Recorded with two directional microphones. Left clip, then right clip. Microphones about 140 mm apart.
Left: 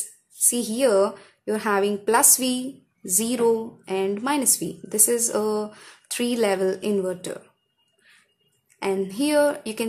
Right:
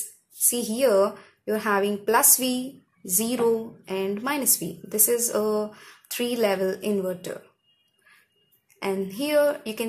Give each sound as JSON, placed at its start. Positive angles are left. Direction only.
{"t": 0.5, "sound": "a woman's voice", "side_deg": 25}
{"t": 8.8, "sound": "a sound", "side_deg": 20}
{"t": 9.1, "sound": "a woman's voice", "side_deg": 25}